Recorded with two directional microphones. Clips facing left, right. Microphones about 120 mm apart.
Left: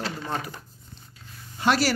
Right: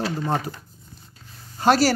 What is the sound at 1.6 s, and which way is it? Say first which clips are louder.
Speech: right 5 dB; 40° right (ahead or behind).